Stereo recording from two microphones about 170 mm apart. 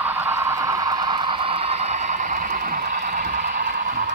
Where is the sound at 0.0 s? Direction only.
10° right (ahead or behind); by 3.7 s 50° right (ahead or behind).